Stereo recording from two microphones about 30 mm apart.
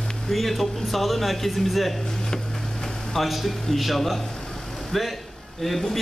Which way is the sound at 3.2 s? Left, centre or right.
Centre.